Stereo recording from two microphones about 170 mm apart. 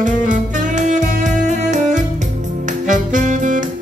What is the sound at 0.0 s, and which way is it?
Music, 45° right (ahead or behind).